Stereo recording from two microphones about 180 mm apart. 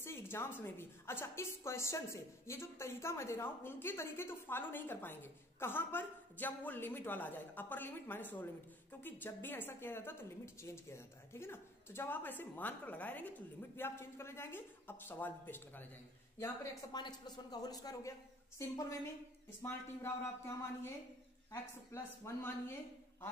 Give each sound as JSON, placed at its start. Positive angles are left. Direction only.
{"t": 0.0, "sound": "a woman's voice", "side_deg": 15}